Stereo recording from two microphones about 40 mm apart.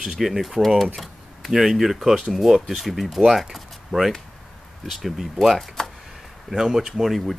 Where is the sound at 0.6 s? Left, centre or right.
Centre.